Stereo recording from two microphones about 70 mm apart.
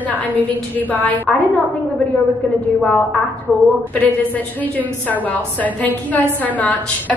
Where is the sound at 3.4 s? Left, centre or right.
Left.